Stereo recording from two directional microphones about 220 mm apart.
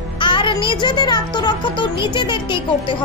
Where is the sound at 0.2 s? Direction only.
20° left (ahead or behind).